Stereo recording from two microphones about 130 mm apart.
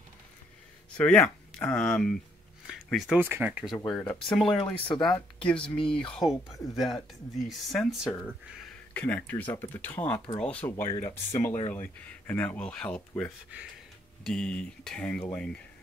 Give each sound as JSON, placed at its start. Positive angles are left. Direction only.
{"t": 0.9, "sound": "speech", "side_deg": 10}
{"t": 2.6, "sound": "a sound", "side_deg": -5}
{"t": 3.2, "sound": "speech", "side_deg": -15}
{"t": 3.6, "sound": "speech", "side_deg": 5}
{"t": 11.1, "sound": "speech", "side_deg": 25}
{"t": 11.7, "sound": "speech", "side_deg": 15}
{"t": 14.2, "sound": "speech", "side_deg": 5}